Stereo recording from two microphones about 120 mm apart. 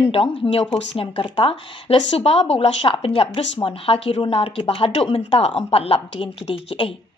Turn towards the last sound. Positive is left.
turn(degrees=50)  # may be behind; listen again after turning